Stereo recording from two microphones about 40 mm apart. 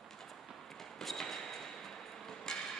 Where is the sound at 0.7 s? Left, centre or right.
Centre.